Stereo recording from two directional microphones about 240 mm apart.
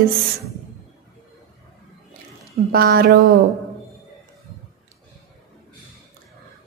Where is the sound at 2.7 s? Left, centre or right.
Right.